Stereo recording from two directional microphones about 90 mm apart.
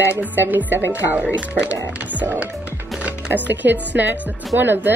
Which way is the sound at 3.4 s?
20° right (ahead or behind).